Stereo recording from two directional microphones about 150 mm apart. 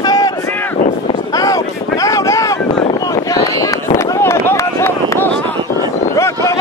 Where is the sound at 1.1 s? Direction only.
25° left (ahead or behind).